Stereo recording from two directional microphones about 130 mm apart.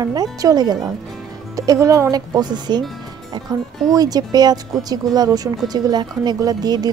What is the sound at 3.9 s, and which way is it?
A woman's voice, 30° right (ahead or behind).